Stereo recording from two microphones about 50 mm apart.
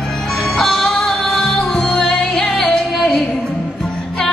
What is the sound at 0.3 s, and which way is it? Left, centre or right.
Music, centre.